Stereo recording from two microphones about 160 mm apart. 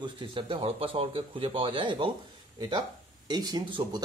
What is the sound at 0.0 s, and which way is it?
Speech, 30° right (ahead or behind).